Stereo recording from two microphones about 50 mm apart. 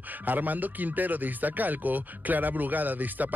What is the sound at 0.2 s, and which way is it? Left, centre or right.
Speech, right.